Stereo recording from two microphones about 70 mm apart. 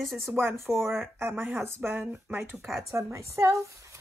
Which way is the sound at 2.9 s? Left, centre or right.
Right.